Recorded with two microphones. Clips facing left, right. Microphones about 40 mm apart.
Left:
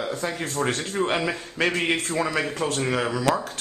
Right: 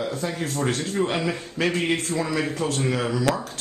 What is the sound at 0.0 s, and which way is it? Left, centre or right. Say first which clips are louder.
Speech: right 1 dB; centre.